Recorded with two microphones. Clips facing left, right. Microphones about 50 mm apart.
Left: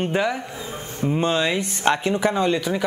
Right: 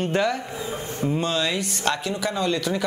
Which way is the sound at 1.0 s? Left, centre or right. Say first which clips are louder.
Left 3 dB; left.